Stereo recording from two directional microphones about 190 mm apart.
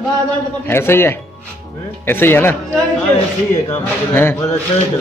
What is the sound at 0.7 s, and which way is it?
Speech, 10° left (ahead or behind).